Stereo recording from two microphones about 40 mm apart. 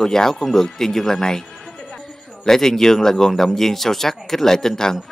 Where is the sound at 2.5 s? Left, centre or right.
Centre.